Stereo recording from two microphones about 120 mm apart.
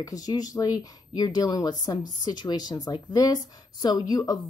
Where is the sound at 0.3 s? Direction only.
35° left (ahead or behind).